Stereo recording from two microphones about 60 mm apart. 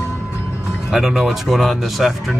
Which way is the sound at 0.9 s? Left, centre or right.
Centre.